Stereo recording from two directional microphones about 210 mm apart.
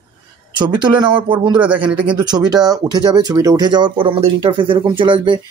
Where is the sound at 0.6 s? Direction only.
20° right (ahead or behind).